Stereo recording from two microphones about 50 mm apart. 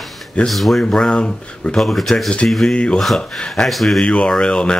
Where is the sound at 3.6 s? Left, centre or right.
Centre.